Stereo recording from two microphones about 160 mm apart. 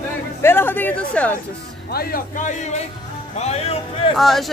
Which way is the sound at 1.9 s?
70° left (ahead or behind).